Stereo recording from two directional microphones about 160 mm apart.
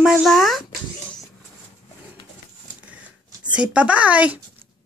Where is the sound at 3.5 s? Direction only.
10° right (ahead or behind).